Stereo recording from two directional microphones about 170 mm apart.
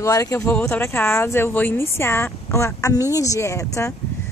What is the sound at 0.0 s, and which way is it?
Speech, 20° left (ahead or behind).